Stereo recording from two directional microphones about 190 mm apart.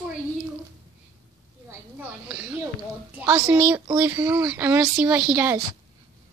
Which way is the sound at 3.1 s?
15° right (ahead or behind).